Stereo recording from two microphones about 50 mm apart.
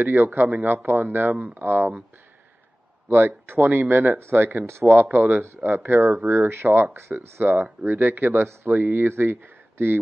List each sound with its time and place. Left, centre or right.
0.0 s speech: right
3.1 s speech: right
5.4 s speech: right
7.4 s speech: right